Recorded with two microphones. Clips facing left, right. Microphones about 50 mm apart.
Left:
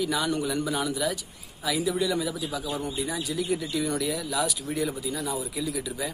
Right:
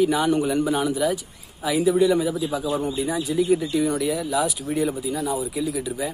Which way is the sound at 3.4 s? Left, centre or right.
Centre.